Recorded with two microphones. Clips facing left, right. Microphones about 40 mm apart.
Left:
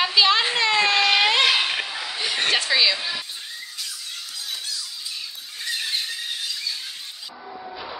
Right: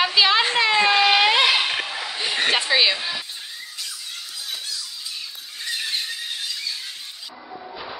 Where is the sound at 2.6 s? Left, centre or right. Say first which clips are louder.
Right 1 dB; centre.